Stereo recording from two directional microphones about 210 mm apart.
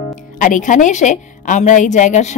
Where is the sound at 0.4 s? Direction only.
35° left (ahead or behind).